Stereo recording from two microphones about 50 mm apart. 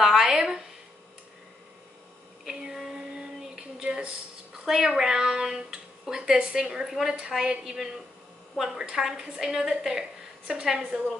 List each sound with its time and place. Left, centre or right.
0.0 s speech: centre
2.4 s a sound: centre
4.6 s speech: centre